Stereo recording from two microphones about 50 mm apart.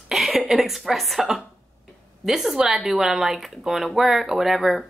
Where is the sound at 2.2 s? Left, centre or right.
Centre.